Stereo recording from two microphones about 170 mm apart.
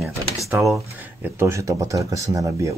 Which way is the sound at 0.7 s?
15° right (ahead or behind).